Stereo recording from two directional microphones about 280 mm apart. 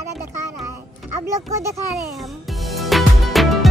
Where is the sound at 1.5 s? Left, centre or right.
Centre.